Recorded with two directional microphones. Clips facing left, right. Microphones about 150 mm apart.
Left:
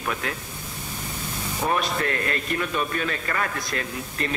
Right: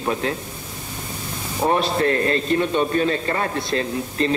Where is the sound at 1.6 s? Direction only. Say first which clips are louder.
Right 6 dB; 30° right (ahead or behind).